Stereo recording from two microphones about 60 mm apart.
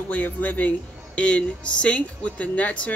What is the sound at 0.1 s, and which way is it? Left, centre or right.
Speech, left.